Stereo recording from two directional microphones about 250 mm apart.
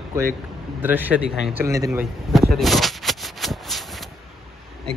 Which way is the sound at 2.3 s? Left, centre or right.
Centre.